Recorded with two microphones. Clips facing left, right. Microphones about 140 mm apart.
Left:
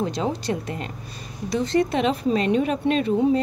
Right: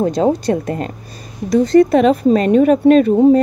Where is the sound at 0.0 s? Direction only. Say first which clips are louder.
Right 10 dB; 45° right (ahead or behind).